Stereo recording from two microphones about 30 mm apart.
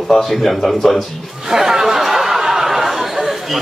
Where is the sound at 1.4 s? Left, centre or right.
Centre.